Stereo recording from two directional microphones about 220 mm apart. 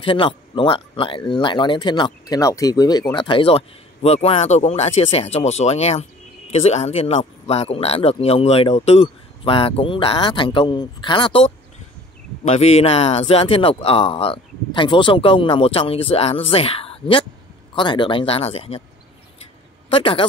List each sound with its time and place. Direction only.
0.0 s speech: 25° left (ahead or behind)
19.9 s speech: 25° left (ahead or behind)